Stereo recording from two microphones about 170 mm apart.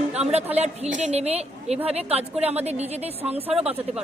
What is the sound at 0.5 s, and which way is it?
A woman's voice, 40° right (ahead or behind).